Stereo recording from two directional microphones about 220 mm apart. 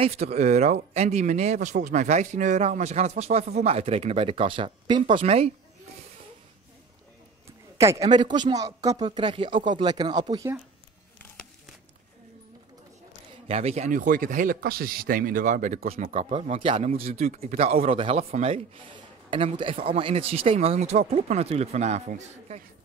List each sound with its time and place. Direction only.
0.0 s speech: 30° right (ahead or behind)
7.7 s speech: 15° right (ahead or behind)
13.5 s speech: 30° right (ahead or behind)